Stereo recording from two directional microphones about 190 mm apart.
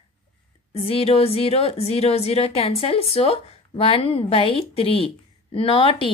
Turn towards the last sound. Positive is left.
turn(degrees=30)  # may be behind; listen again after turning